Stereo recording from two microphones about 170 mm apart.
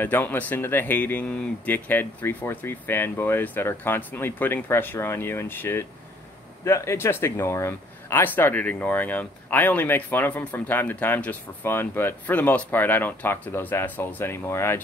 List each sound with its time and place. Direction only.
0.0 s speech: 10° left (ahead or behind)